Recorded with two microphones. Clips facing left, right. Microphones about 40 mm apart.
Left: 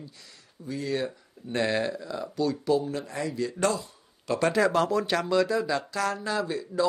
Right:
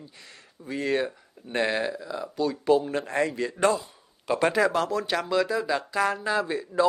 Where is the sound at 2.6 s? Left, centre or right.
Right.